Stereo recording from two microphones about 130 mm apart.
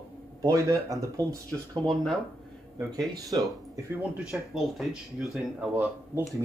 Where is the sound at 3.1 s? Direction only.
25° right (ahead or behind).